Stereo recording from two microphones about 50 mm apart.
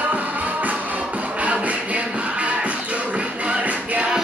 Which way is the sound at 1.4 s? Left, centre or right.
Right.